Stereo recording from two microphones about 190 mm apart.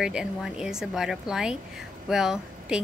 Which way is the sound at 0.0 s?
5° right (ahead or behind).